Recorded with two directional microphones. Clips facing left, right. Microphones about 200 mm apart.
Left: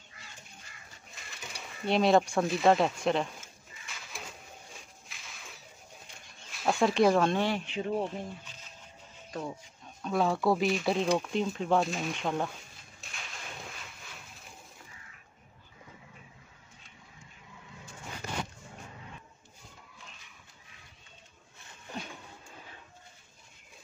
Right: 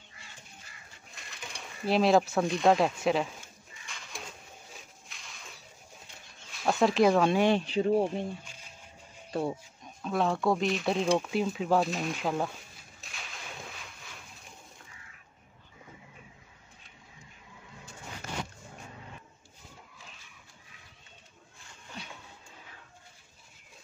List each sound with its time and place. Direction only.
1.1 s a sound: centre (ahead or behind)
6.5 s speech: centre (ahead or behind)
7.5 s speech: 30° right (ahead or behind)
9.3 s speech: 30° right (ahead or behind)
10.0 s speech: centre (ahead or behind)
13.0 s a sound: centre (ahead or behind)